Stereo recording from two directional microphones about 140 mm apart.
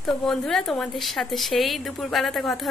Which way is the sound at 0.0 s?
5° left (ahead or behind).